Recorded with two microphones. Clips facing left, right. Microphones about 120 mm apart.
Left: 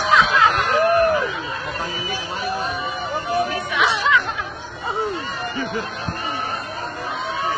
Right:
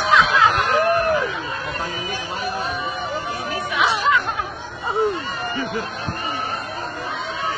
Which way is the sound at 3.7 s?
40° right (ahead or behind).